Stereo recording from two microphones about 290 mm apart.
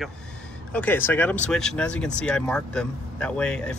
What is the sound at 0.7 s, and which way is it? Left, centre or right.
Speech, centre.